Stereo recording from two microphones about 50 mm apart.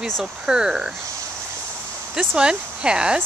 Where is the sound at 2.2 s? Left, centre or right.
Centre.